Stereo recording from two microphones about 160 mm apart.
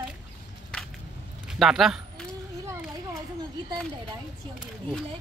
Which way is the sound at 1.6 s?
Centre (ahead or behind).